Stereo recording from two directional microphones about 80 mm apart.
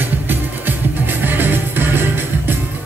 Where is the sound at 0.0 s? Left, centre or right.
Right.